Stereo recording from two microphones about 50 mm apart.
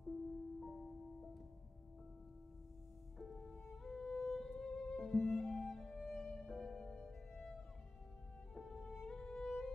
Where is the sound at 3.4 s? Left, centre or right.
Centre.